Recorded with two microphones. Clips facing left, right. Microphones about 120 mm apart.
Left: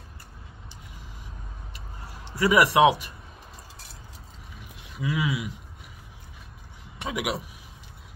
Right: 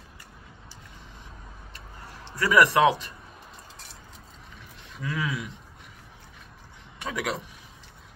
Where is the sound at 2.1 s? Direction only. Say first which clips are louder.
Left 2 dB; 15° left (ahead or behind).